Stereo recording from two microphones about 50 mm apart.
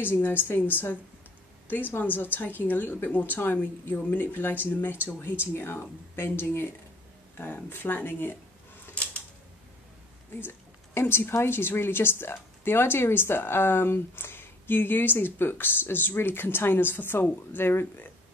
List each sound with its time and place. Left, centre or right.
0.0 s a woman's voice: left
8.9 s a sound: left
11.0 s a woman's voice: left